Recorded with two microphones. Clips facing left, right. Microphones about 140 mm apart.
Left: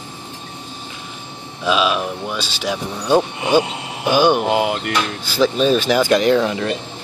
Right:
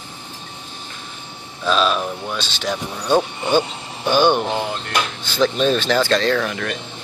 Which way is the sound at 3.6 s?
70° left (ahead or behind).